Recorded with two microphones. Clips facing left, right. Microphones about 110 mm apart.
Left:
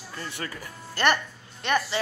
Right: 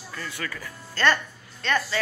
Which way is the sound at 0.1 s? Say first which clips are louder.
Right 1 dB; 30° left (ahead or behind).